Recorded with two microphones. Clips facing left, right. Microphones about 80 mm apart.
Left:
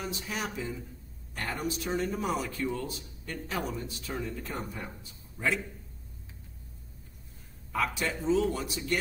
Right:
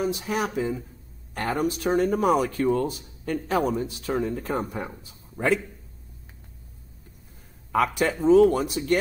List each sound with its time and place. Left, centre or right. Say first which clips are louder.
0.0 s speech: right 9 dB; right
5.4 s speech: right 7 dB; right
7.7 s speech: right 8 dB; right